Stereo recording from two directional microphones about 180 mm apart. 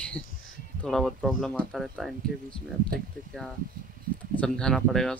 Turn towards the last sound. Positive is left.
turn(degrees=0)  # may be behind; listen again after turning